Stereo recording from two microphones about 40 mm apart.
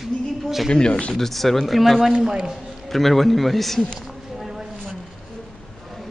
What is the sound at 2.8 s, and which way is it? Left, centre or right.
Speech, centre.